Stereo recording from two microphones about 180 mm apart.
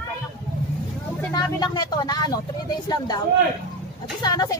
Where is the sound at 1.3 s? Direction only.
20° left (ahead or behind).